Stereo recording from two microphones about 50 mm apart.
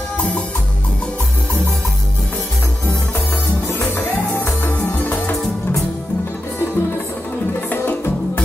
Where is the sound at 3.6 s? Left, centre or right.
Left.